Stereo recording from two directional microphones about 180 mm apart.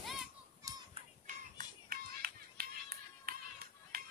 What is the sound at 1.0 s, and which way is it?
Music, 45° right (ahead or behind).